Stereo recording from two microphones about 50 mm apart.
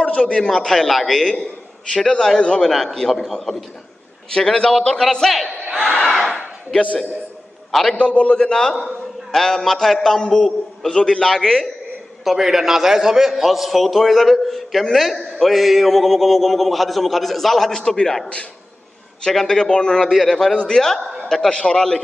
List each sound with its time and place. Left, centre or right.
0.0 s a sound: left
0.4 s a man's voice: centre
2.0 s a man's voice: centre
5.1 s a man's voice: centre
5.6 s crowd: centre
6.1 s speech: centre
7.7 s a man's voice: centre
8.0 s a man's voice: left
8.7 s a man's voice: centre
10.9 s a man's voice: centre
12.3 s a man's voice: centre
17.6 s a man's voice: centre
19.4 s a man's voice: centre
20.1 s a man's voice: centre